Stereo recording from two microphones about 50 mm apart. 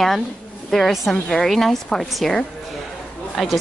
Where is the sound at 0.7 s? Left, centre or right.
Centre.